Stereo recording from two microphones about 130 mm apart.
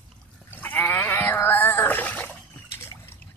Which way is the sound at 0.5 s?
15° left (ahead or behind).